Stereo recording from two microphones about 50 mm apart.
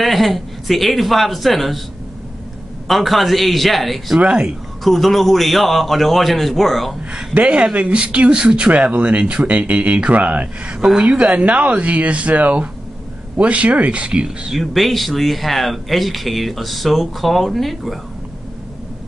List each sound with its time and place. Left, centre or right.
0.0 s speech: centre
2.9 s speech: centre
4.2 s speech: right
4.8 s speech: centre
7.3 s speech: right
14.2 s speech: centre
14.6 s speech: centre